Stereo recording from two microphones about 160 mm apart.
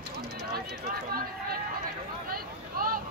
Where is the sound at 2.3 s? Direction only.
65° right (ahead or behind).